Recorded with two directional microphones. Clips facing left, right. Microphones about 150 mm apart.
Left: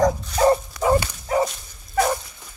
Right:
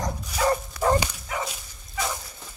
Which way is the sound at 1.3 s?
35° left (ahead or behind).